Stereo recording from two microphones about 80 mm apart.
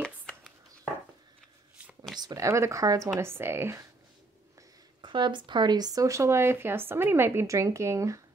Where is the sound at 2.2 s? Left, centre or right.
Right.